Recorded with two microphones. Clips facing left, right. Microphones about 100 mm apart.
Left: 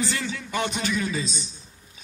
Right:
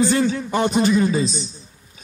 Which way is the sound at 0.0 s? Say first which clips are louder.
Right 11 dB; 35° right (ahead or behind).